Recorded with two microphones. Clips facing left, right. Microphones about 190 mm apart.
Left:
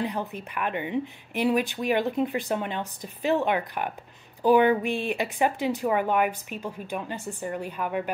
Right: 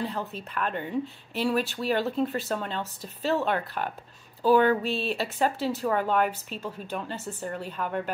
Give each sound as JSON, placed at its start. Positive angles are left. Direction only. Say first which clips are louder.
{"t": 0.0, "sound": "speech", "louder": "left 2 dB", "side_deg": 15}